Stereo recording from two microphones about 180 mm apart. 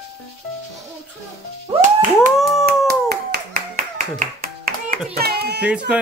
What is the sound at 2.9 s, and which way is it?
Music, 60° right (ahead or behind).